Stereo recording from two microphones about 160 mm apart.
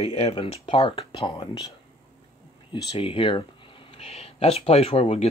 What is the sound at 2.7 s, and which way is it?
Speech, 35° left (ahead or behind).